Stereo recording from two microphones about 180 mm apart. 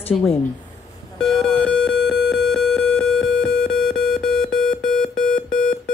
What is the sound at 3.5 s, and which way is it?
Alarm, 5° left (ahead or behind).